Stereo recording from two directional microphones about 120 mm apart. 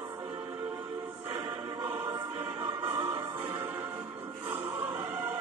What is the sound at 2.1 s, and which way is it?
Music, 25° right (ahead or behind).